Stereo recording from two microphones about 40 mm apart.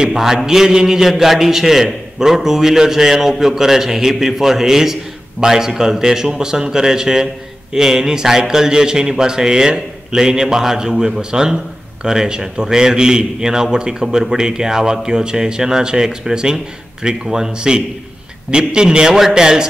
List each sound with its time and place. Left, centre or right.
0.1 s a man's voice: centre